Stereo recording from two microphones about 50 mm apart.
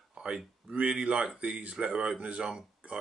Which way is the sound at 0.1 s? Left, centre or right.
Centre.